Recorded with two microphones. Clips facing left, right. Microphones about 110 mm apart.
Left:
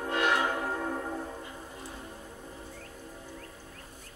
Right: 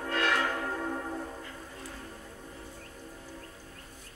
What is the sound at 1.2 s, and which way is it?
Music, 20° left (ahead or behind).